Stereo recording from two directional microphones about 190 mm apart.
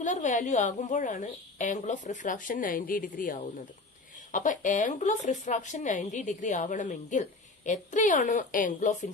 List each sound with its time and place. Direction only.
0.0 s speech: 40° left (ahead or behind)